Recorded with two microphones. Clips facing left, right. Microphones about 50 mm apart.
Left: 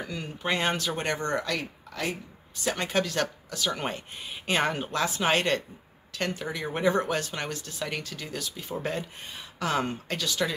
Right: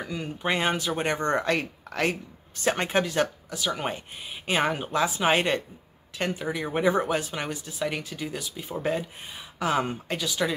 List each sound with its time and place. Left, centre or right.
0.0 s speech: centre
1.2 s speech: right
2.9 s speech: centre